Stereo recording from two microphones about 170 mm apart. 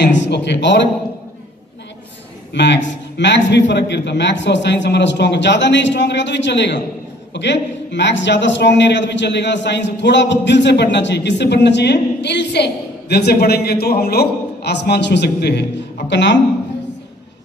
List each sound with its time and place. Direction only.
0.0 s a man's voice: 90° left
2.5 s a man's voice: 90° left